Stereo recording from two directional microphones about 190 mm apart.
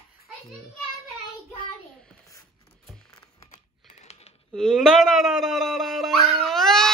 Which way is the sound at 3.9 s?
35° left (ahead or behind).